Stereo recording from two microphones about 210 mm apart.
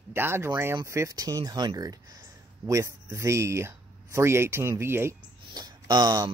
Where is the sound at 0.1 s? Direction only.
10° right (ahead or behind).